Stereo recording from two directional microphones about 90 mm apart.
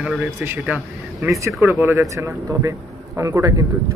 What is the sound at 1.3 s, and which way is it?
Speech, 35° right (ahead or behind).